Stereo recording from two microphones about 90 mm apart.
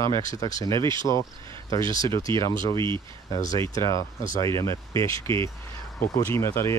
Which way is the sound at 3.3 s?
45° left (ahead or behind).